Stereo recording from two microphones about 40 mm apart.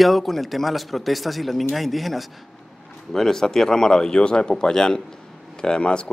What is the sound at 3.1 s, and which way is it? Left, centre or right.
Speech, centre.